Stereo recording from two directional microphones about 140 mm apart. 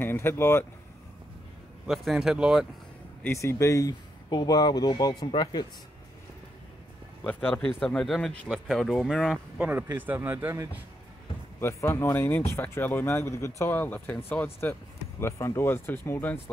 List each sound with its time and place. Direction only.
0.0 s speech: 15° left (ahead or behind)
1.9 s speech: centre (ahead or behind)
3.3 s speech: 20° left (ahead or behind)
7.2 s speech: 10° left (ahead or behind)
9.6 s speech: 15° right (ahead or behind)
11.6 s speech: 15° left (ahead or behind)